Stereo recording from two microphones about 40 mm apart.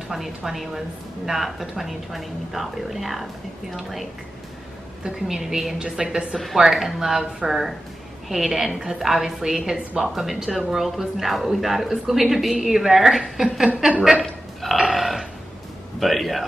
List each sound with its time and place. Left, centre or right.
0.1 s speech: centre
5.0 s a woman's voice: centre
14.6 s burping: centre
16.0 s speech: centre